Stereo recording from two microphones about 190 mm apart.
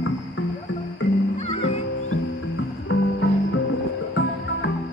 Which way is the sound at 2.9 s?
85° left.